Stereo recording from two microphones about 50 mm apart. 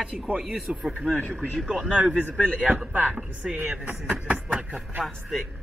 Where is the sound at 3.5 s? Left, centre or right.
Right.